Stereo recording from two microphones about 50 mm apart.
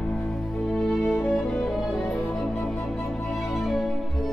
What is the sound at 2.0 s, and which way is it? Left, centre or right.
Music, left.